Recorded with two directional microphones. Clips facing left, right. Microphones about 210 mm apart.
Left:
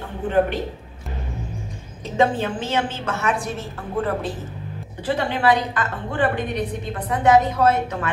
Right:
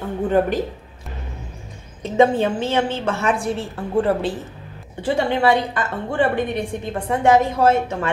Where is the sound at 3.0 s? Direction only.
30° right (ahead or behind).